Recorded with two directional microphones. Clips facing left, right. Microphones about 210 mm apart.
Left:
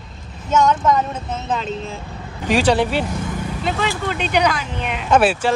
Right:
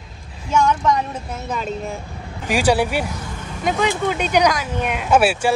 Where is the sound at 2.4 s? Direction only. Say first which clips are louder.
Left 1 dB; 10° right (ahead or behind).